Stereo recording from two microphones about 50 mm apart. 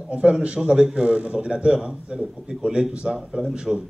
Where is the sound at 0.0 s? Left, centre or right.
Right.